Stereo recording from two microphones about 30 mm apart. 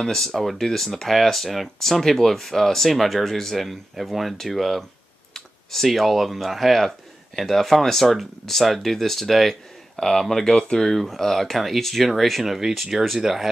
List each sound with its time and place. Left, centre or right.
0.0 s speech: centre
9.9 s speech: centre
12.4 s speech: centre
12.7 s speech: centre
13.2 s speech: centre